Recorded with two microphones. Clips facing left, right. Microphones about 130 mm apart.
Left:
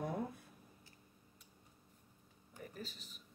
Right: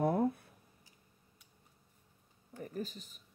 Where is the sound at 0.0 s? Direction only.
60° right (ahead or behind).